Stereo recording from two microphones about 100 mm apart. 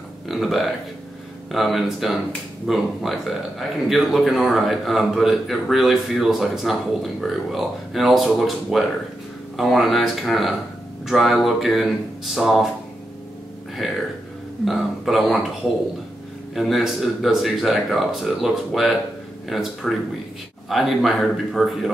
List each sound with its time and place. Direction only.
0.3 s a man's voice: centre (ahead or behind)
14.6 s a man's voice: centre (ahead or behind)
16.5 s a man's voice: centre (ahead or behind)